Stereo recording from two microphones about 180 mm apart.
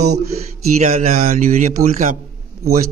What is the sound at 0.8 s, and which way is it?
Speech, 35° right (ahead or behind).